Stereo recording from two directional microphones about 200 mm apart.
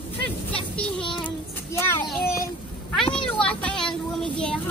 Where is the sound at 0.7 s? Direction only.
5° left (ahead or behind).